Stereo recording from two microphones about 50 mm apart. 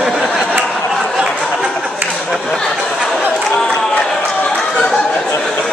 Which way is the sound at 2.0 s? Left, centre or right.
Right.